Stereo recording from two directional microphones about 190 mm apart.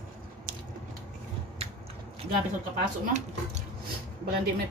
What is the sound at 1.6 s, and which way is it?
Biting, 30° right (ahead or behind).